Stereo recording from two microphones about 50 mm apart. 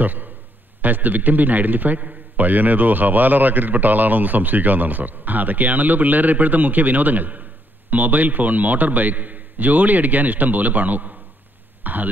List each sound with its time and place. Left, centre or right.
0.0 s a man's voice: right